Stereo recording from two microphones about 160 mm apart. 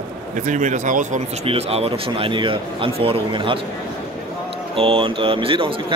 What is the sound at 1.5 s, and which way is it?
A man's voice, 40° right (ahead or behind).